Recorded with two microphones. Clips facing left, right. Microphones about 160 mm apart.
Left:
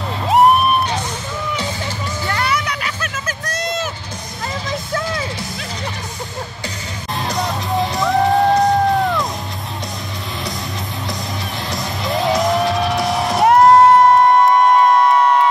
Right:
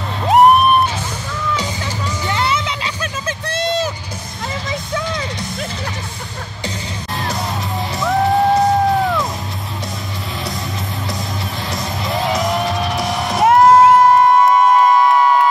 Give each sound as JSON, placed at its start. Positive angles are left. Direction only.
{"t": 0.3, "sound": "music", "side_deg": 0}
{"t": 2.2, "sound": "music", "side_deg": -20}
{"t": 4.6, "sound": "a sound", "side_deg": 5}
{"t": 7.2, "sound": "music", "side_deg": 0}
{"t": 11.7, "sound": "music", "side_deg": 0}